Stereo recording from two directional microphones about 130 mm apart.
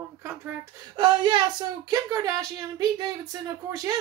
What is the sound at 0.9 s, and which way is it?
A woman's voice, 40° right (ahead or behind).